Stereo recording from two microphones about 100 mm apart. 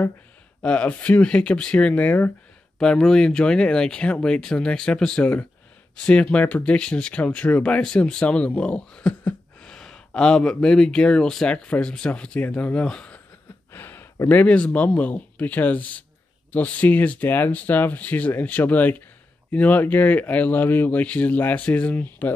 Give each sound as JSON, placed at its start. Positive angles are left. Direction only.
{"t": 0.6, "sound": "speech", "side_deg": 10}
{"t": 13.7, "sound": "speech", "side_deg": 20}